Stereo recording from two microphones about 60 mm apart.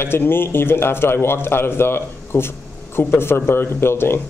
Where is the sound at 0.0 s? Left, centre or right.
Left.